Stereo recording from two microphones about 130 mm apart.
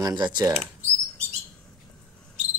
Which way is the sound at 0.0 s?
35° right (ahead or behind).